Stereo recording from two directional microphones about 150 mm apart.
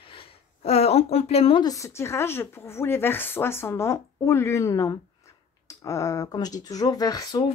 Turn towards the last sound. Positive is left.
turn(degrees=25)  # may be behind; listen again after turning